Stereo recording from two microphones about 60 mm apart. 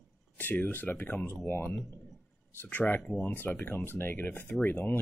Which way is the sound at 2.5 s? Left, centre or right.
Left.